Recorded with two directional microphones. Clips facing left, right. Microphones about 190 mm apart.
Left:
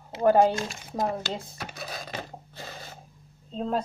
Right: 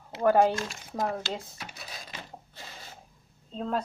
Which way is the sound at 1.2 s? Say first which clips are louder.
Left 2 dB; 45° left (ahead or behind).